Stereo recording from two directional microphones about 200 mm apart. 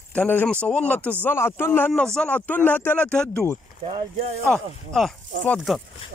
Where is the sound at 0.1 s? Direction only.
10° left (ahead or behind).